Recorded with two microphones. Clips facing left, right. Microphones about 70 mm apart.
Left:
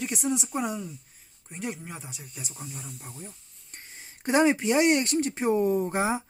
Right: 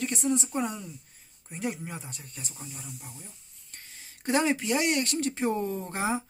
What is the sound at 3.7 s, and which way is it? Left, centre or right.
Speech, left.